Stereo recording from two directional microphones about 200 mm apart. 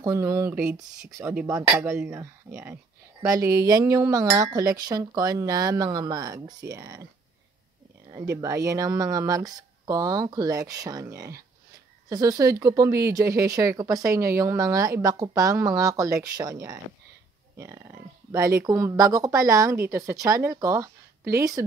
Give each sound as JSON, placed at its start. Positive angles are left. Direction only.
{"t": 0.0, "sound": "speech", "side_deg": -15}
{"t": 8.1, "sound": "speech", "side_deg": -15}